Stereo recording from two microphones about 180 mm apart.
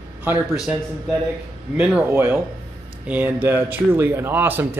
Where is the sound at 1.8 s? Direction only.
5° right (ahead or behind).